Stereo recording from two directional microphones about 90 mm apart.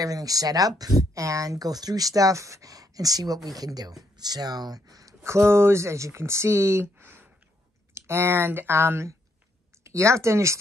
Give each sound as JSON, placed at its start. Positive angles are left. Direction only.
{"t": 0.0, "sound": "speech", "side_deg": -40}